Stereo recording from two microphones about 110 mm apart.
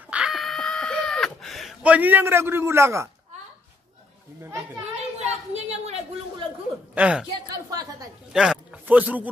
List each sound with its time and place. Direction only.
0.1 s a sound: 5° right (ahead or behind)
1.8 s a man's voice: 15° right (ahead or behind)
5.5 s a woman's voice: 80° right
7.0 s a woman's voice: 10° right (ahead or behind)
7.5 s a woman's voice: 35° right (ahead or behind)
8.3 s speech: 5° right (ahead or behind)